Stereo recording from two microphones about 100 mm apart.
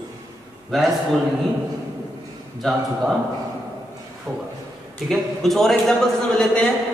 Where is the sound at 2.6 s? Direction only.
Centre (ahead or behind).